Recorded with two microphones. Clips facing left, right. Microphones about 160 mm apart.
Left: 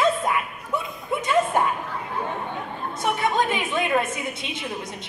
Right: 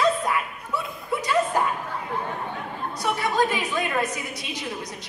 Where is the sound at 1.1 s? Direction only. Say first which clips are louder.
Left 1 dB; 20° left (ahead or behind).